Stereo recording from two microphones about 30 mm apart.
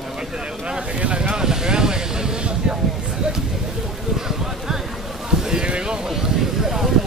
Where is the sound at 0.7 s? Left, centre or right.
Right.